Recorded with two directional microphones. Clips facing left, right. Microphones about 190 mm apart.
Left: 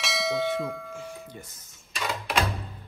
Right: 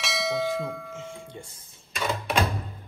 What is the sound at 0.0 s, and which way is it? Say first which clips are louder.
Church bell: even; centre (ahead or behind).